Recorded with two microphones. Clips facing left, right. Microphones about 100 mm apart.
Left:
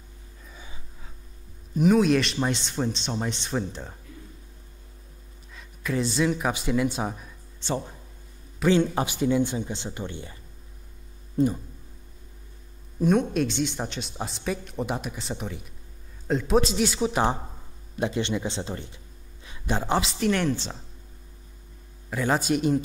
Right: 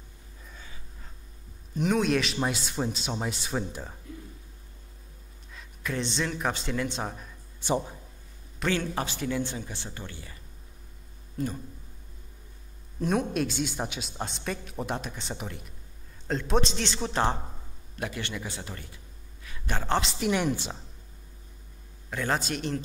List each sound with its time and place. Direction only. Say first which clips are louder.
1.8 s speech: left 5 dB; centre (ahead or behind)
5.5 s speech: left 4 dB; centre (ahead or behind)
8.6 s speech: left 7 dB; 20° left (ahead or behind)
11.4 s speech: left 9 dB; 30° left (ahead or behind)
13.0 s speech: left 5 dB; centre (ahead or behind); by 18.9 s 25° left (ahead or behind)
19.4 s a sound: left 5 dB; 20° left (ahead or behind)
20.0 s speech: left 3 dB; centre (ahead or behind)
20.2 s a woman's voice: left 2 dB; 15° right (ahead or behind)
22.1 s speech: left 5 dB; 5° left (ahead or behind)